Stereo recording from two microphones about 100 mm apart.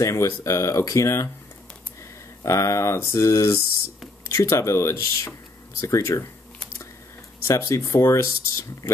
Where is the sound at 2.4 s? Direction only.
30° left (ahead or behind).